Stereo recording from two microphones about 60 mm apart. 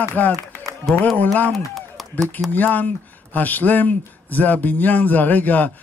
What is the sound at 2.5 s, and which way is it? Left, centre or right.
A man's voice, left.